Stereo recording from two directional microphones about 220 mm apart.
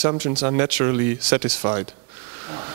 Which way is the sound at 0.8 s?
15° right (ahead or behind).